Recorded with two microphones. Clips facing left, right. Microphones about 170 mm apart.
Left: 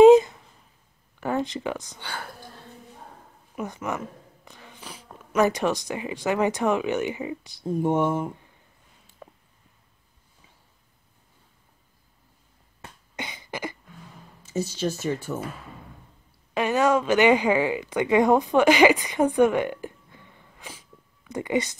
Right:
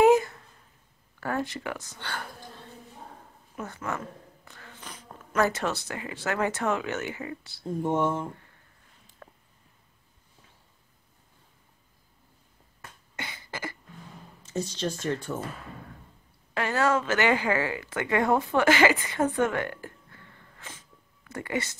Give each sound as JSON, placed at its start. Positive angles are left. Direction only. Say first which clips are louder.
{"t": 0.0, "sound": "a sound", "louder": "left 7 dB", "side_deg": 20}
{"t": 1.2, "sound": "speech", "louder": "left 4 dB", "side_deg": 20}
{"t": 3.5, "sound": "speech", "louder": "left 4 dB", "side_deg": 15}
{"t": 9.2, "sound": "a sound", "louder": "left 4 dB", "side_deg": 15}
{"t": 13.1, "sound": "cough", "louder": "left 4 dB", "side_deg": 20}
{"t": 14.4, "sound": "speech", "louder": "left 4 dB", "side_deg": 5}
{"t": 16.5, "sound": "speech", "louder": "left 4 dB", "side_deg": 15}